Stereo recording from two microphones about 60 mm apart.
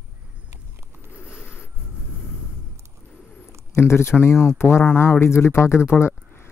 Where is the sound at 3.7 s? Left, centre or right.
Left.